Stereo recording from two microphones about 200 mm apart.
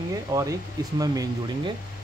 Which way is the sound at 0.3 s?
15° right (ahead or behind).